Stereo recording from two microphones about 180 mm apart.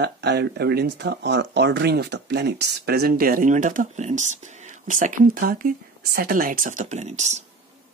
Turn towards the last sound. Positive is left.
turn(degrees=-40)  # may be behind; listen again after turning